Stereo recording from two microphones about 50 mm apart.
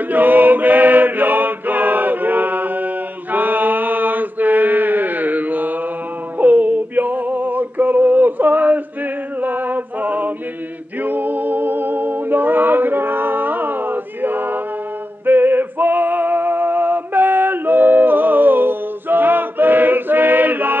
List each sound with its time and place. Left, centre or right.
0.1 s mantra: right
6.3 s music: right
9.4 s male singing: right
11.0 s a capella: right
15.2 s music: right